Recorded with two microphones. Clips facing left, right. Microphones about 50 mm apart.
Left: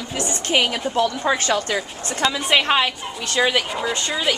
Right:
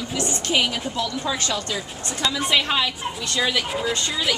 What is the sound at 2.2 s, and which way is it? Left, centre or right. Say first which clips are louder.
A woman's voice: left 3 dB; left.